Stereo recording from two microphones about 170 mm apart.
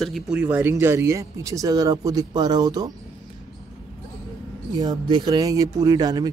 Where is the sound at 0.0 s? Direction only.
Centre (ahead or behind); by 2.9 s 25° right (ahead or behind).